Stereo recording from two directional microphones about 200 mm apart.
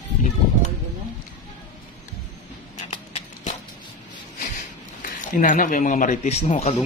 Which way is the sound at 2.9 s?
30° left (ahead or behind).